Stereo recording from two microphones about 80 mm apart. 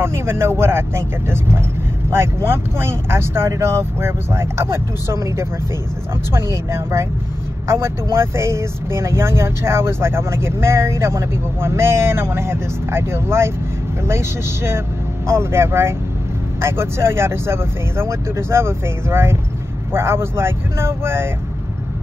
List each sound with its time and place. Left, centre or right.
0.0 s speech: right